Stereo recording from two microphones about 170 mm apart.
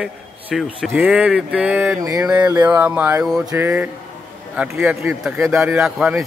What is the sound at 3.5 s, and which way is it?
A man's voice, 15° right (ahead or behind).